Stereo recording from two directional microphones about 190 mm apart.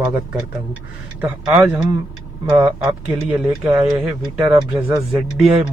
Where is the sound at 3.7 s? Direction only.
35° right (ahead or behind).